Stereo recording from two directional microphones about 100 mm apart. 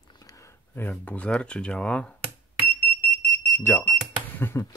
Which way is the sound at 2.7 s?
15° left (ahead or behind).